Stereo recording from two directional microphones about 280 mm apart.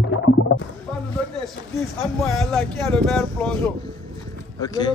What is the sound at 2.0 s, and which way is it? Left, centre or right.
Speech, centre.